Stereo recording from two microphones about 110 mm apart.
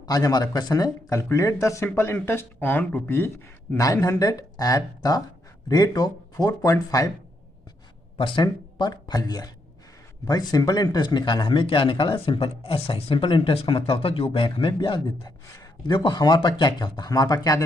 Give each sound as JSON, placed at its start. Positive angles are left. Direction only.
{"t": 0.0, "sound": "speech", "side_deg": 35}
{"t": 8.2, "sound": "speech", "side_deg": 45}